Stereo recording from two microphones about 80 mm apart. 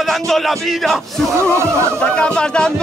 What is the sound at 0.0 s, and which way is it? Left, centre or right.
Music, centre.